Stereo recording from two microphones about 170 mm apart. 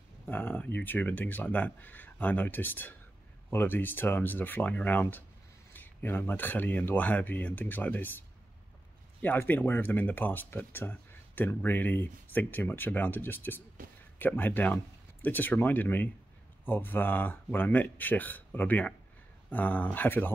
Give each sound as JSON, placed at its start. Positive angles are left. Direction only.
{"t": 0.3, "sound": "speech", "side_deg": 10}